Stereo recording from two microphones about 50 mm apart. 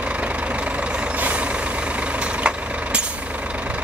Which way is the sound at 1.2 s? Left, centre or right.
Right.